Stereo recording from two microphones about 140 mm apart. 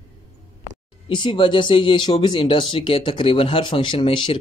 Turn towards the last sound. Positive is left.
turn(degrees=35)  # may be behind; listen again after turning